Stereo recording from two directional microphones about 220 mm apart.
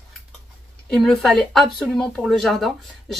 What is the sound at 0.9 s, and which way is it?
Speech, centre (ahead or behind).